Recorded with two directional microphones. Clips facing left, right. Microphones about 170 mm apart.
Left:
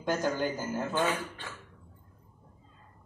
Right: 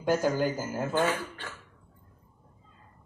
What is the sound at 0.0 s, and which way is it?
Speech, 10° right (ahead or behind).